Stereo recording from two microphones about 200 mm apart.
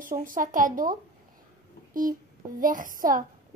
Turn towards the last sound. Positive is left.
turn(degrees=-40)  # may be behind; listen again after turning